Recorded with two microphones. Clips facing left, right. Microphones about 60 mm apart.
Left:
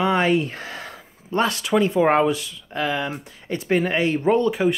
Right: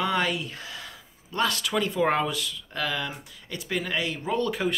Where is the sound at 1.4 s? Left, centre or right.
Left.